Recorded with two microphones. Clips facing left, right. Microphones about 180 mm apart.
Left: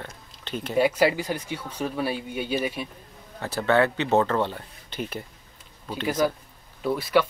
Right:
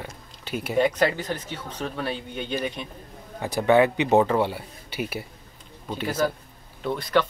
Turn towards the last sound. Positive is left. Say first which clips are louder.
# left 1 dB
turn(degrees=5)  # may be behind; listen again after turning